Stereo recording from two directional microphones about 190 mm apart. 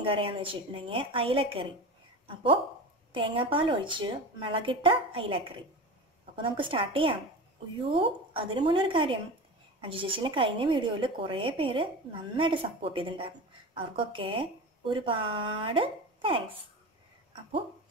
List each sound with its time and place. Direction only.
0.0 s a woman's voice: 30° right (ahead or behind)